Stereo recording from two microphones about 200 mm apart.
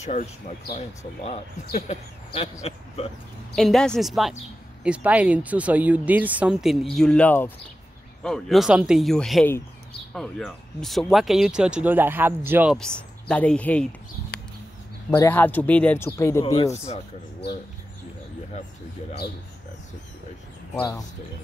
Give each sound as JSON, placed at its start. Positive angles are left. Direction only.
{"t": 0.0, "sound": "speech", "side_deg": 35}
{"t": 3.5, "sound": "speech", "side_deg": 5}
{"t": 12.7, "sound": "speech", "side_deg": 5}
{"t": 15.0, "sound": "speech", "side_deg": 10}
{"t": 16.5, "sound": "speech", "side_deg": 30}
{"t": 20.7, "sound": "speech", "side_deg": 15}